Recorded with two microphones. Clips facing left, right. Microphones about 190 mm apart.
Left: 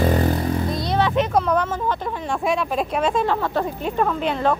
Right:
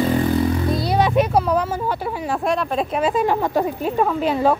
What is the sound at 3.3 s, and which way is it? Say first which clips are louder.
Speech: right 3 dB; 20° right (ahead or behind).